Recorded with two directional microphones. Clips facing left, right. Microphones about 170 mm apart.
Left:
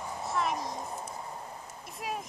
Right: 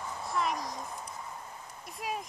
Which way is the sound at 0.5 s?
25° left (ahead or behind).